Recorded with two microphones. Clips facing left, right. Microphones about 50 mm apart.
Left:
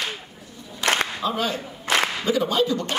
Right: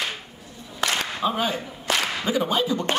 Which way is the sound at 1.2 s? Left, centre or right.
Centre.